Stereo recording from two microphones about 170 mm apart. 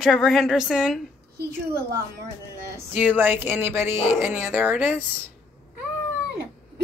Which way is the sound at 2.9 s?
10° right (ahead or behind).